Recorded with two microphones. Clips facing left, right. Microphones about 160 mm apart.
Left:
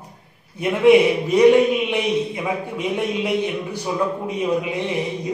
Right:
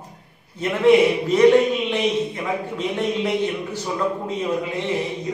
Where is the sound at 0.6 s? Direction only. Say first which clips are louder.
Left 2 dB; 15° left (ahead or behind).